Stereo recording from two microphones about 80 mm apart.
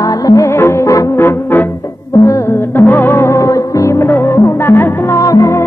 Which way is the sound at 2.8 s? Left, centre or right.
Left.